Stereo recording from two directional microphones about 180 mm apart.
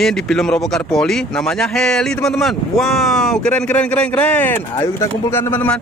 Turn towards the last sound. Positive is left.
turn(degrees=10)  # may be behind; listen again after turning